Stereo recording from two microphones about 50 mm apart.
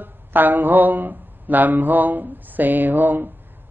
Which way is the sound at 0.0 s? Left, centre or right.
Right.